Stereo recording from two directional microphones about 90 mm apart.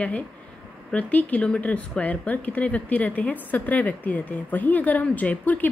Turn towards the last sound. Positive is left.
turn(degrees=20)  # may be behind; listen again after turning